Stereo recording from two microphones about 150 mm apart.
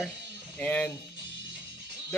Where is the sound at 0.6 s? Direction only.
10° left (ahead or behind).